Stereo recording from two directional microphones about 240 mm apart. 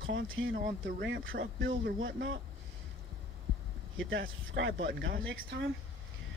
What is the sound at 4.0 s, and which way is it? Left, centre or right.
Speech, right.